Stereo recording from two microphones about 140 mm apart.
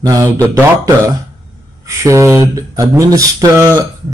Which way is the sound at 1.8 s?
20° right (ahead or behind).